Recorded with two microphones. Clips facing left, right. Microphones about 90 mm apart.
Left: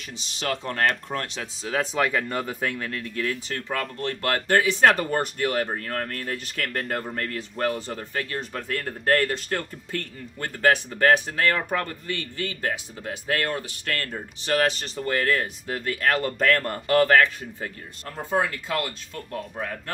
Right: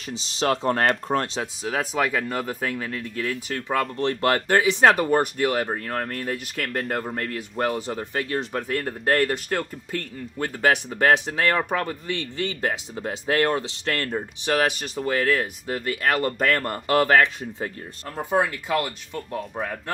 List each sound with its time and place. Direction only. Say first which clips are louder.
0.4 s speech: right 4 dB; 30° right (ahead or behind)
1.6 s speech: left 1 dB; 10° right (ahead or behind)
3.8 s speech: right 5 dB; 30° right (ahead or behind); by 7.1 s 5° right (ahead or behind)
7.1 s speech: right 1 dB; 15° right (ahead or behind)